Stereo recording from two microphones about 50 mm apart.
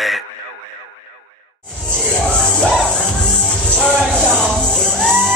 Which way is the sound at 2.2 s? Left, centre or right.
Centre.